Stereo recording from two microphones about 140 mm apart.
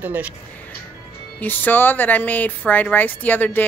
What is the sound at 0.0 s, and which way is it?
Speech, 10° right (ahead or behind).